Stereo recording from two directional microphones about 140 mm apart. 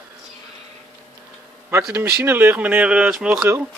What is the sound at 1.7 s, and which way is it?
Speech, 20° right (ahead or behind).